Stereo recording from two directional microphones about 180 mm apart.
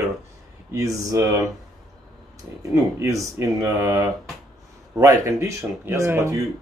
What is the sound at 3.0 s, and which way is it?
Speech, 15° right (ahead or behind).